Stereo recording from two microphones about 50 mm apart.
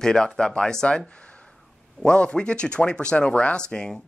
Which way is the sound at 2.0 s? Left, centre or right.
Centre.